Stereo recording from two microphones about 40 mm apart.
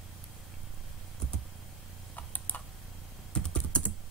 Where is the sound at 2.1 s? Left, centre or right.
Left.